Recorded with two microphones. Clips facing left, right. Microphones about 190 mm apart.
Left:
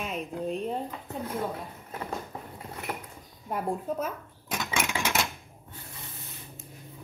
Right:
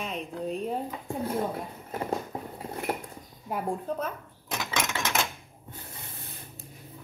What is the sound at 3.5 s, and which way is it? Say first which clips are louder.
Cash register: even; centre (ahead or behind).